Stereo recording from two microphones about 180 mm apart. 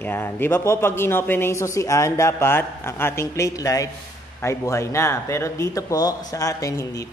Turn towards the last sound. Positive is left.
turn(degrees=20)  # may be behind; listen again after turning